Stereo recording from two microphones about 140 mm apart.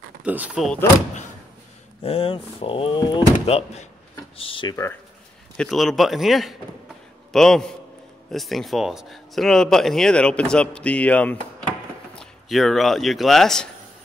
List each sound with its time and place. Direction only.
0.2 s speech: 10° right (ahead or behind)
2.0 s speech: 45° left (ahead or behind)
5.6 s speech: centre (ahead or behind)